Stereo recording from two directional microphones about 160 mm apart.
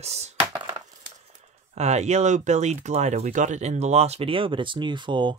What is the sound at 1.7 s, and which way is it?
Speech, 45° right (ahead or behind).